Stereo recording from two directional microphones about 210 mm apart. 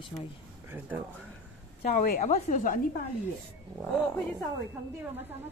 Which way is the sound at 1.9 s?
35° left (ahead or behind).